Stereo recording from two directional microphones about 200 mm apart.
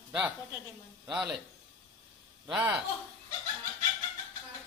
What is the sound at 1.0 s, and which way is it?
Speech, centre (ahead or behind).